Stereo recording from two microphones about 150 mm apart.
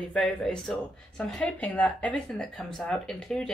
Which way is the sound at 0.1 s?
5° left (ahead or behind).